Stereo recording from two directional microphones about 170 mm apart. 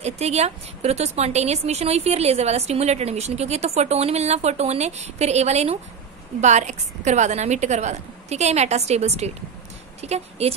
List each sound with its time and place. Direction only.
0.0 s a woman's voice: 40° right (ahead or behind)